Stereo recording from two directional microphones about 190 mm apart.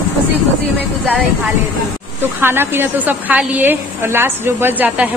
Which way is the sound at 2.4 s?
10° right (ahead or behind).